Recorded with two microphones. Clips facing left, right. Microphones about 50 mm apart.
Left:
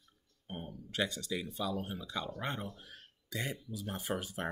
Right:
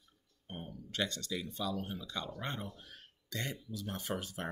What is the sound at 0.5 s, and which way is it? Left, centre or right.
Speech, centre.